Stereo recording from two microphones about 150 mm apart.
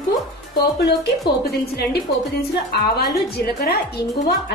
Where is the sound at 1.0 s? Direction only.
90° left.